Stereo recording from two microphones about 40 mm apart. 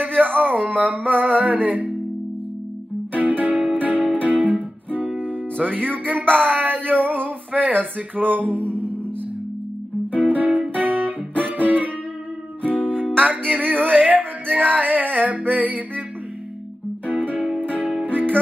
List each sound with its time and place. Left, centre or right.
0.0 s a sound: right
0.7 s music: right
3.1 s music: right
10.1 s music: right
13.7 s a sound: left
14.0 s music: right
17.1 s music: right